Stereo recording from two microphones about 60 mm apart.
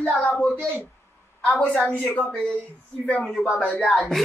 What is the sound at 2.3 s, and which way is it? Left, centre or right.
Speech, centre.